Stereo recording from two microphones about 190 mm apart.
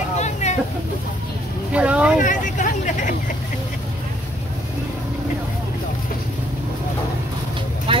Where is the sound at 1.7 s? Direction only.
5° right (ahead or behind).